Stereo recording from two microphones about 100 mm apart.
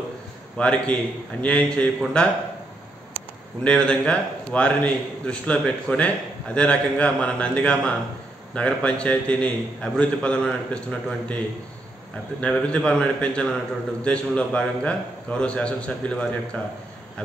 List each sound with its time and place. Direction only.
0.6 s a man's voice: 10° left (ahead or behind)
3.6 s a man's voice: 10° left (ahead or behind)